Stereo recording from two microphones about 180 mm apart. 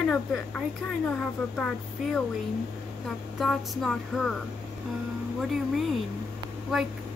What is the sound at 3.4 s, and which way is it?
A woman's voice, centre (ahead or behind).